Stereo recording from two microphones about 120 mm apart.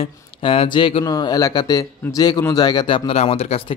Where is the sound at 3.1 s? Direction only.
60° left (ahead or behind).